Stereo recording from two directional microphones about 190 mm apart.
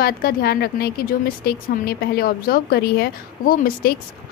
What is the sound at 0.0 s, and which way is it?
A woman's voice, 55° left (ahead or behind).